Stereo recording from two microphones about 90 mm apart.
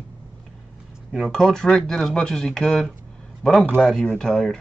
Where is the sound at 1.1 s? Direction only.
Centre (ahead or behind).